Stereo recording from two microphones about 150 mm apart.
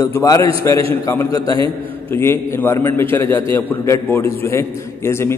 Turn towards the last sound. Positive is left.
turn(degrees=15)  # may be behind; listen again after turning